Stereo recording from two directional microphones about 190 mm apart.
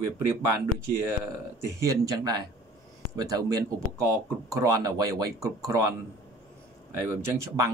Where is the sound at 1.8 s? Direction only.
20° right (ahead or behind).